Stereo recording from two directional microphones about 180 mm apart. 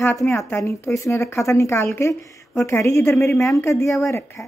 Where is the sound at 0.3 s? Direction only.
15° left (ahead or behind).